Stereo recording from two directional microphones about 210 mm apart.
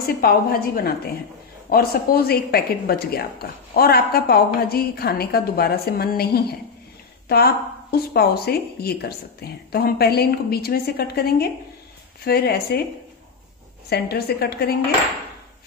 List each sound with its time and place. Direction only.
0.0 s a woman's voice: 45° left (ahead or behind)
13.8 s a woman's voice: 50° left (ahead or behind)